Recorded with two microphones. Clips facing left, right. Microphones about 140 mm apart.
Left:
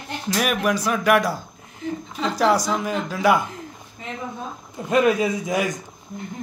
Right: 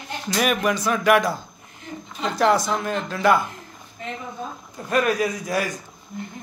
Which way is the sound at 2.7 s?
5° left (ahead or behind).